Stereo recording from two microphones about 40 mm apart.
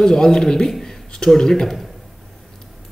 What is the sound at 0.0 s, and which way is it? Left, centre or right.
Speech, centre.